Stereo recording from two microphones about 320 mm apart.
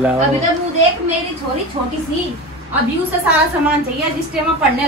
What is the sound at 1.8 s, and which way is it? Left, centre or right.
Speech, centre.